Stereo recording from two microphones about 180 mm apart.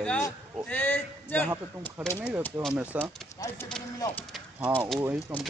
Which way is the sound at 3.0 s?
10° left (ahead or behind).